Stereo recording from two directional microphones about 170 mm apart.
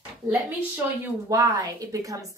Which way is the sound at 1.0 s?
20° right (ahead or behind).